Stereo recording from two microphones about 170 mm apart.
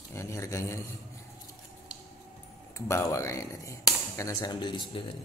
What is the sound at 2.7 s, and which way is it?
Speech, 15° left (ahead or behind).